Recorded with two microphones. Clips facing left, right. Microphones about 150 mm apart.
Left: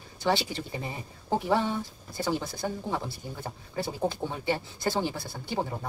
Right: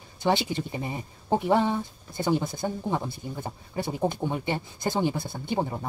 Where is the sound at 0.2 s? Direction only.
20° right (ahead or behind).